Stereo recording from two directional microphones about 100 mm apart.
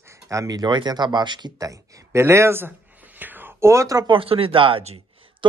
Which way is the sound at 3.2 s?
20° right (ahead or behind).